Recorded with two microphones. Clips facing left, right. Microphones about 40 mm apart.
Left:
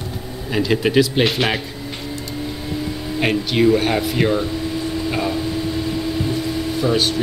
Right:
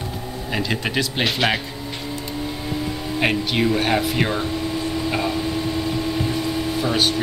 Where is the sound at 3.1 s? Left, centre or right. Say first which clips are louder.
Left 2 dB; centre.